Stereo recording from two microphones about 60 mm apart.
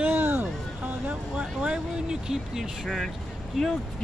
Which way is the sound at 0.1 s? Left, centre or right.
Right.